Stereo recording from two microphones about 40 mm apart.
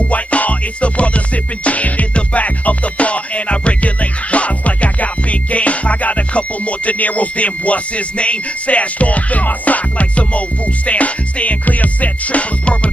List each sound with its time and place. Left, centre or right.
0.1 s music: left